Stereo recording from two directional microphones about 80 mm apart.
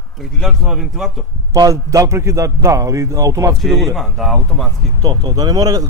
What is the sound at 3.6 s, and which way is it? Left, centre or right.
Speech, centre.